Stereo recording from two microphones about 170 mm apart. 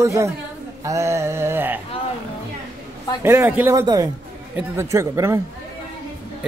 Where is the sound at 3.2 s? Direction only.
15° right (ahead or behind).